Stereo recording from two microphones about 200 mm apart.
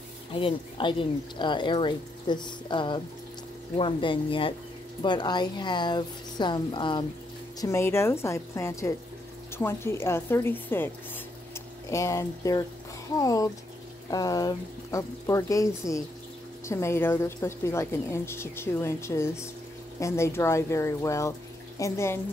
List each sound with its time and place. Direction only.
0.3 s speech: 25° left (ahead or behind)
7.6 s a woman's voice: 15° left (ahead or behind)